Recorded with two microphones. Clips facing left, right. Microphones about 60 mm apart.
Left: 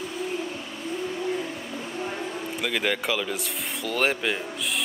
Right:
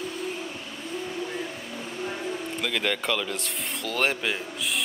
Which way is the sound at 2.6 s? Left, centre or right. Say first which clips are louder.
Left 2 dB; centre.